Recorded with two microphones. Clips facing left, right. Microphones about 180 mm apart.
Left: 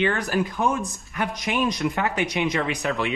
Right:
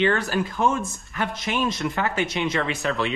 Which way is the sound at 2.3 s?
20° left (ahead or behind).